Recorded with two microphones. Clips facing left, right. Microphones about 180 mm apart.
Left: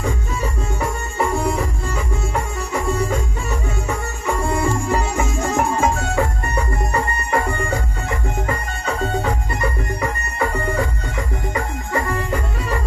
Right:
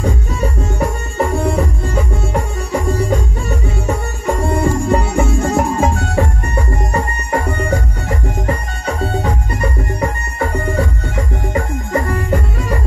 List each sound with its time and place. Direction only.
0.0 s music: 40° right (ahead or behind)
9.6 s music: 40° right (ahead or behind)